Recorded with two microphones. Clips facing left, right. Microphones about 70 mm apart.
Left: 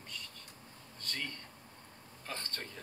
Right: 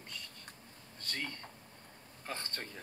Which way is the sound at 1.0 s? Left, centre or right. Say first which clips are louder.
Right 1 dB; right.